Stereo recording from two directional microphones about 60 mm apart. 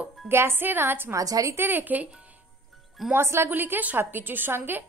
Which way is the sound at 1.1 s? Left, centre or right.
Right.